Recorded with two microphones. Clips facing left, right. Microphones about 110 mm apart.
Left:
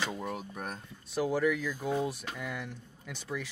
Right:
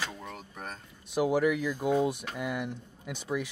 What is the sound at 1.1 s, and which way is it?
Speech, 15° right (ahead or behind).